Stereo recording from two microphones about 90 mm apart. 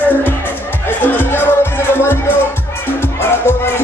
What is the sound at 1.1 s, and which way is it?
Music, 25° left (ahead or behind).